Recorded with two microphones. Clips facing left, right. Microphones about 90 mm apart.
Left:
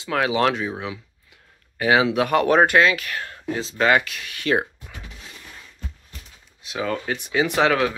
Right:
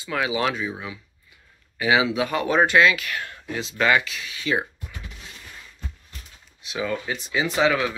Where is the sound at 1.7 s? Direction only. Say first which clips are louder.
Left 2 dB; 50° left (ahead or behind).